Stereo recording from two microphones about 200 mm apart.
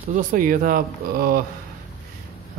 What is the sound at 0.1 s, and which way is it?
Speech, 40° right (ahead or behind).